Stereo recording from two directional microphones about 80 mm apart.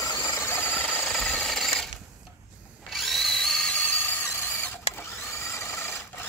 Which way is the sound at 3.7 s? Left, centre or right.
Left.